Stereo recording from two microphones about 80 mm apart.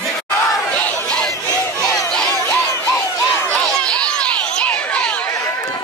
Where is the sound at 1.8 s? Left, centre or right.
Centre.